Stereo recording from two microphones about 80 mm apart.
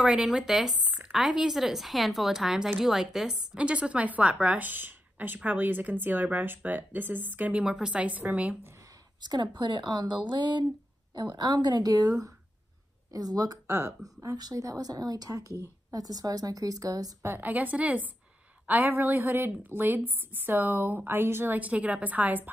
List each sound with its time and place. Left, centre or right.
0.0 s speech: centre
0.8 s a sound: centre
1.1 s speech: centre
3.5 s a woman's voice: centre
9.2 s speech: right
11.3 s a woman's voice: right
14.2 s a woman's voice: right
17.2 s a woman's voice: right
17.5 s a woman's voice: right